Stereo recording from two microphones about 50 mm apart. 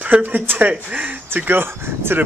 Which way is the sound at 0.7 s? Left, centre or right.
Right.